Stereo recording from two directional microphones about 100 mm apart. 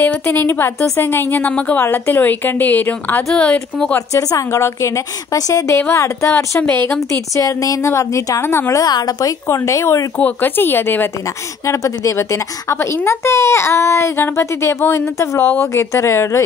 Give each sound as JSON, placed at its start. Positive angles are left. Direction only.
{"t": 0.0, "sound": "a woman's voice", "side_deg": 20}
{"t": 4.1, "sound": "a woman's voice", "side_deg": 35}
{"t": 6.6, "sound": "a woman's voice", "side_deg": 15}
{"t": 7.3, "sound": "a woman's voice", "side_deg": 35}
{"t": 9.6, "sound": "a woman's voice", "side_deg": 25}
{"t": 10.1, "sound": "a woman's voice", "side_deg": 15}
{"t": 11.6, "sound": "a woman's voice", "side_deg": 30}